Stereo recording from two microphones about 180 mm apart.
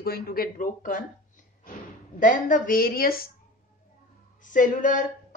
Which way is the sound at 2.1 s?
45° left (ahead or behind).